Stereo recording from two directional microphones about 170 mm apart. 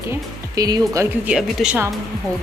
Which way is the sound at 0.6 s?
20° right (ahead or behind).